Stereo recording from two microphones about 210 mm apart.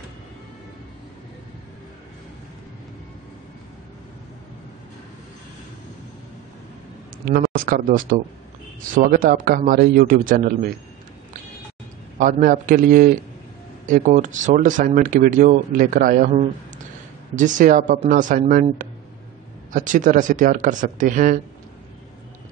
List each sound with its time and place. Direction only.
7.2 s speech: 45° right (ahead or behind)
12.2 s speech: 40° right (ahead or behind)